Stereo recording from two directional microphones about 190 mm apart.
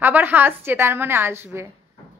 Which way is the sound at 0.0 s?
10° right (ahead or behind).